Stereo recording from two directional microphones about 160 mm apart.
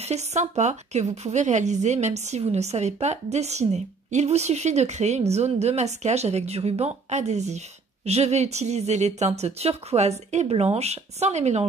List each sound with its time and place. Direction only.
0.0 s speech: 45° right (ahead or behind)